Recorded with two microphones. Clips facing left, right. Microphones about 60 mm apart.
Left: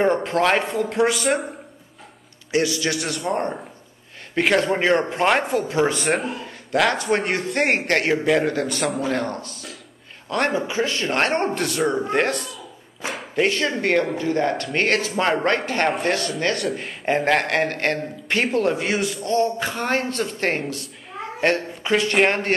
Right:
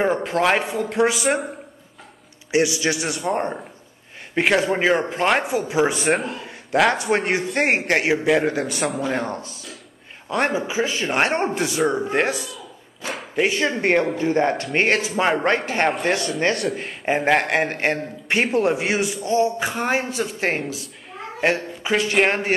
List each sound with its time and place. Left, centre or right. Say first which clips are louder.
0.0 s speech: left 1 dB; centre
2.5 s a man's voice: right 2 dB; centre
13.5 s speech: right 3 dB; centre
14.9 s a man's voice: even; centre